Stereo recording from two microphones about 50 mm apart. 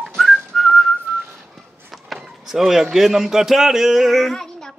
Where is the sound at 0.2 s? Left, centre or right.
Centre.